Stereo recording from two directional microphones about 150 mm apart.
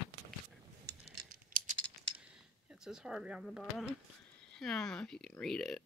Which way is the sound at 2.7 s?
5° right (ahead or behind).